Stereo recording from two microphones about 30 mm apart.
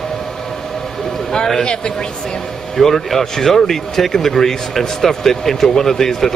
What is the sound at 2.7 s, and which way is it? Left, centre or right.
Speech, centre.